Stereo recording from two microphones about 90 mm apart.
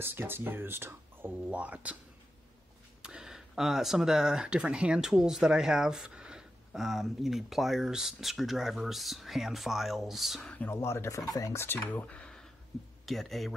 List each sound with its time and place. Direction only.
0.0 s speech: 25° right (ahead or behind)
3.0 s speech: 10° right (ahead or behind)
10.4 s speech: 15° left (ahead or behind)
10.7 s speech: 30° left (ahead or behind)
11.6 s speech: 20° left (ahead or behind); by 13.6 s centre (ahead or behind)